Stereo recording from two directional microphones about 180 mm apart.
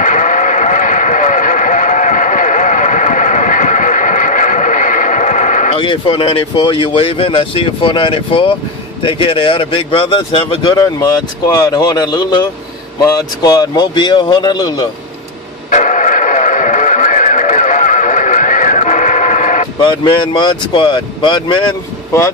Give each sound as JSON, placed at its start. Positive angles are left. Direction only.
{"t": 0.0, "sound": "vehicle", "side_deg": 45}
{"t": 5.8, "sound": "speech", "side_deg": 30}
{"t": 15.7, "sound": "music", "side_deg": 45}
{"t": 19.8, "sound": "speech", "side_deg": 25}